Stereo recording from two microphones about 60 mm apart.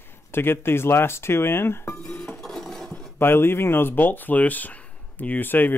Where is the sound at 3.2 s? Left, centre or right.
Left.